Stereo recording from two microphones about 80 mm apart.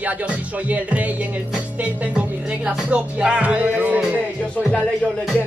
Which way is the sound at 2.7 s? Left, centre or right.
Centre.